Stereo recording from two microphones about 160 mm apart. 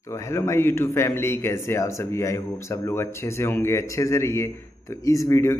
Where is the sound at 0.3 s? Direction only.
15° left (ahead or behind).